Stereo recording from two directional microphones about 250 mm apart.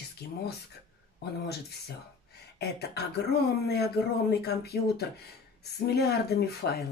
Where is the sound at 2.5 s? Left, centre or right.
Left.